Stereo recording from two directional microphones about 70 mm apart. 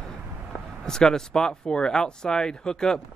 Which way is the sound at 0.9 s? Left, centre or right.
Centre.